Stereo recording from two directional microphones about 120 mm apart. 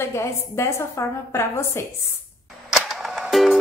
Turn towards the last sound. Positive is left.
turn(degrees=0)  # may be behind; listen again after turning